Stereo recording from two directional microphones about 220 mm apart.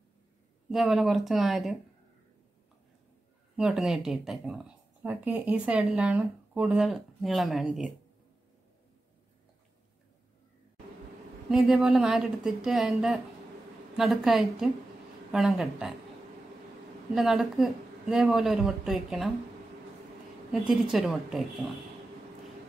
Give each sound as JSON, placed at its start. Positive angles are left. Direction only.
{"t": 0.7, "sound": "speech", "side_deg": 0}
{"t": 3.5, "sound": "speech", "side_deg": 0}
{"t": 11.5, "sound": "speech", "side_deg": 0}
{"t": 17.1, "sound": "speech", "side_deg": 0}
{"t": 20.6, "sound": "speech", "side_deg": 0}